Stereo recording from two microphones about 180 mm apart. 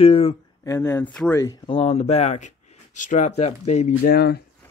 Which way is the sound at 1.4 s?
20° left (ahead or behind).